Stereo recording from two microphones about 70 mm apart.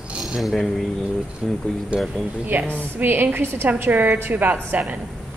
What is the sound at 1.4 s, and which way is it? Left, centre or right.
Speech, centre.